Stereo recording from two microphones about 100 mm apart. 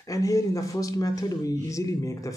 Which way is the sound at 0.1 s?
35° left (ahead or behind).